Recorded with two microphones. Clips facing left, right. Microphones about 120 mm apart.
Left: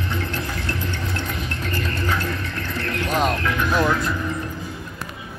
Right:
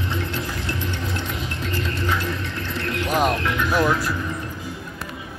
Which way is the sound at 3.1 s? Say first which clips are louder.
Right 1 dB; 10° right (ahead or behind).